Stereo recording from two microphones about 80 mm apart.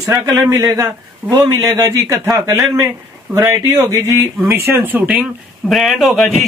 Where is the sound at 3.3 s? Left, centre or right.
Right; by 5.3 s centre.